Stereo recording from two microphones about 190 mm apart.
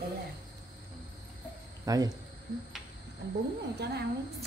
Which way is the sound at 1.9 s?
20° right (ahead or behind).